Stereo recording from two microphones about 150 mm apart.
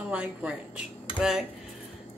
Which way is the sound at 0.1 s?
10° right (ahead or behind).